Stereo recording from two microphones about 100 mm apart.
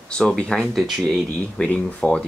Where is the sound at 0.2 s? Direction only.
5° left (ahead or behind).